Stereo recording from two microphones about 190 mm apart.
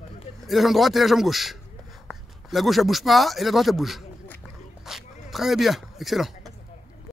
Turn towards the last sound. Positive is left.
turn(degrees=0)  # may be behind; listen again after turning